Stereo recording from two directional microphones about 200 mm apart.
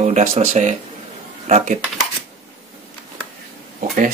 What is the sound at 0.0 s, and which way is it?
Speech, 35° right (ahead or behind).